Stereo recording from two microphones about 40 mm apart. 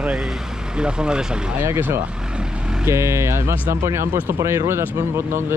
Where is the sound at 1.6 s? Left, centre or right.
Right.